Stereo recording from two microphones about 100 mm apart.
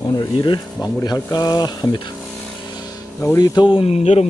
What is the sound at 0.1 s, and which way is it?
Speech, 45° left (ahead or behind).